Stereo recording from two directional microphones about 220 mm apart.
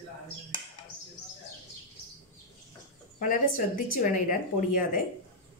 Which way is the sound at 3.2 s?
40° left (ahead or behind).